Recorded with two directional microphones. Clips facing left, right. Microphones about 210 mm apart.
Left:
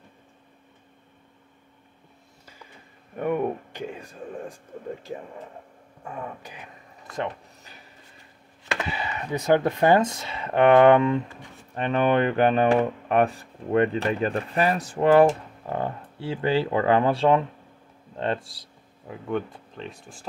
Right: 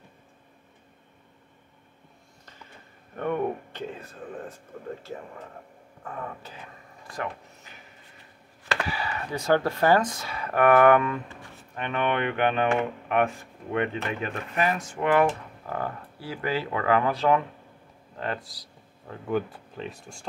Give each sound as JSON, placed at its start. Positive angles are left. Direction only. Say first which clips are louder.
{"t": 3.2, "sound": "speech", "louder": "left 2 dB", "side_deg": 10}
{"t": 6.0, "sound": "speech", "louder": "left 1 dB", "side_deg": 15}
{"t": 8.7, "sound": "speech", "louder": "even", "side_deg": 20}
{"t": 11.7, "sound": "speech", "louder": "left 6 dB", "side_deg": 35}
{"t": 15.6, "sound": "speech", "louder": "left 3 dB", "side_deg": 25}
{"t": 19.2, "sound": "speech", "louder": "right 1 dB", "side_deg": -5}